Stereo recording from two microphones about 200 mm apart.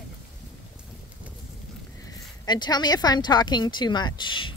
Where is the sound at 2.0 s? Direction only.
20° left (ahead or behind).